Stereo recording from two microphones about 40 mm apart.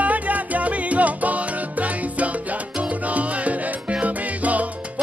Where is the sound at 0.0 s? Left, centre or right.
Right.